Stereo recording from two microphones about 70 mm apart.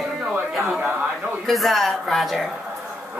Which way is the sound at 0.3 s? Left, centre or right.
Centre.